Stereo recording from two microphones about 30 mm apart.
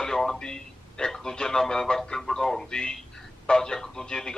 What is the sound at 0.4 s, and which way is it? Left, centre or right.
A man's voice, left.